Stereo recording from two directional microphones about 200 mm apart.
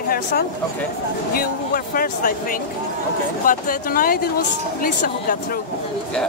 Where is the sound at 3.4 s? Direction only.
45° left (ahead or behind).